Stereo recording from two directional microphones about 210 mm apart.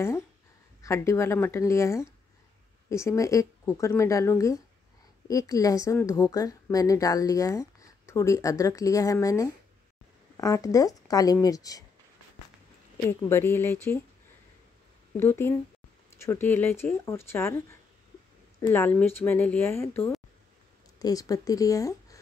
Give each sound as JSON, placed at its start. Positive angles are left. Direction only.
{"t": 0.8, "sound": "a woman's voice", "side_deg": 15}
{"t": 12.9, "sound": "a woman's voice", "side_deg": 10}
{"t": 15.1, "sound": "a woman's voice", "side_deg": 10}
{"t": 21.0, "sound": "speech", "side_deg": 15}